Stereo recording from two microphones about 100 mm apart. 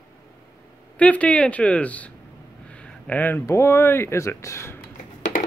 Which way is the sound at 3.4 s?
30° left (ahead or behind).